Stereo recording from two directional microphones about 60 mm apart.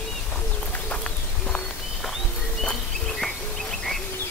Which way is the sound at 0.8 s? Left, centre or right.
Centre.